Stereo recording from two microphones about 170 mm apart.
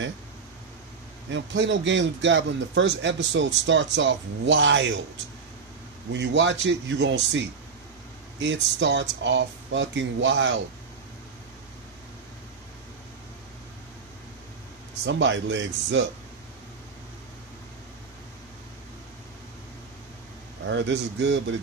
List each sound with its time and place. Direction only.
1.3 s a man's voice: 90° right
6.1 s a man's voice: 90° right
15.0 s a man's voice: 90° right
20.6 s a man's voice: 90° right